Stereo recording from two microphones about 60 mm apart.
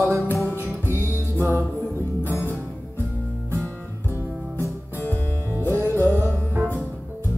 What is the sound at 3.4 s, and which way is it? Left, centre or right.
Music, left.